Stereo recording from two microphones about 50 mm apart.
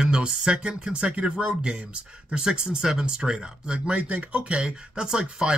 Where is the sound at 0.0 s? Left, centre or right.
Centre.